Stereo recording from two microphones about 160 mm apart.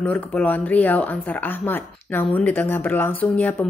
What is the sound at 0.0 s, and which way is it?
A woman's voice, 10° left (ahead or behind).